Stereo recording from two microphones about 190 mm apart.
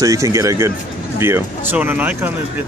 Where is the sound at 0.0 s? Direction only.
15° right (ahead or behind).